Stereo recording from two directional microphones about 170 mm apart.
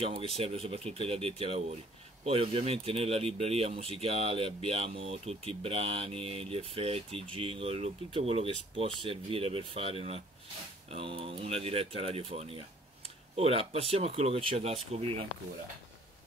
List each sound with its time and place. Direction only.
0.0 s speech: 35° right (ahead or behind)